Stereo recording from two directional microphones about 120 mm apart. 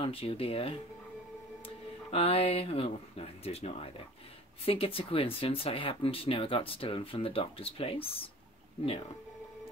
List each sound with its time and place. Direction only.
0.0 s speech: 50° left (ahead or behind)
2.0 s speech: 55° left (ahead or behind)